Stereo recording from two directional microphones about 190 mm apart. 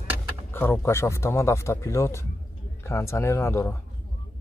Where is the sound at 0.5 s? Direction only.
10° left (ahead or behind).